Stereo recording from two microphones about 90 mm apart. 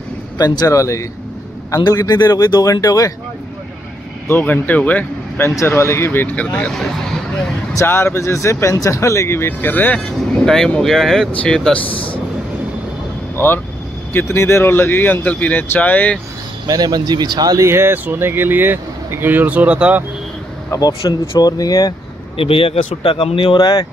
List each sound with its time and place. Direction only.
0.4 s speech: 40° left (ahead or behind)
1.8 s speech: 45° left (ahead or behind)
4.3 s speech: 20° left (ahead or behind)
5.6 s speech: 30° left (ahead or behind); by 6.7 s 15° left (ahead or behind)
6.7 s speech: 5° left (ahead or behind)
7.7 s speech: 25° left (ahead or behind)
9.9 s speech: 5° left (ahead or behind)
13.4 s speech: 25° left (ahead or behind)
16.6 s speech: 50° right (ahead or behind)
17.6 s speech: 25° right (ahead or behind)
21.0 s speech: 45° left (ahead or behind)
22.4 s speech: 90° left; by 23.9 s 55° left (ahead or behind)